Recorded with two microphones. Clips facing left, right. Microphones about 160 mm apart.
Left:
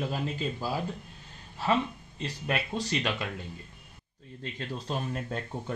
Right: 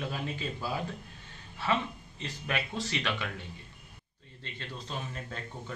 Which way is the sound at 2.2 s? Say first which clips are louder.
Left 3 dB; 35° left (ahead or behind).